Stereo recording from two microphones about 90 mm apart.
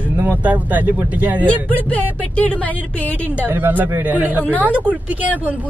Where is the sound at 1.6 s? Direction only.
15° left (ahead or behind).